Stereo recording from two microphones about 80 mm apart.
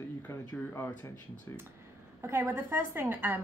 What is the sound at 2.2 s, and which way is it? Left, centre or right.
A woman's voice, right.